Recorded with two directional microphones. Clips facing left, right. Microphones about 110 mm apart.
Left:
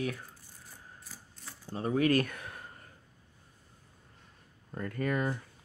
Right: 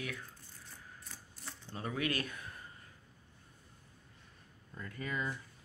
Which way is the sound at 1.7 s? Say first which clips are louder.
Left 10 dB; 35° left (ahead or behind).